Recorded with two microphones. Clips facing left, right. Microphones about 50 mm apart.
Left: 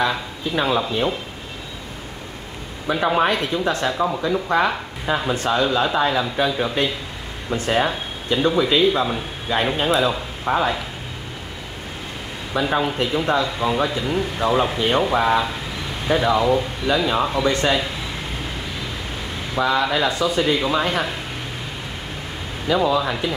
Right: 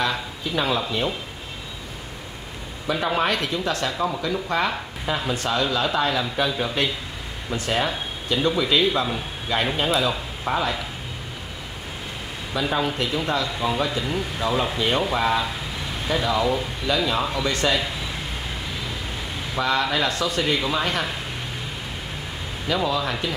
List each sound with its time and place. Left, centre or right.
0.0 s a man's voice: centre
2.9 s a man's voice: centre
12.5 s speech: left
13.8 s a man's voice: centre
14.4 s a man's voice: left
19.6 s a man's voice: centre
22.7 s a man's voice: centre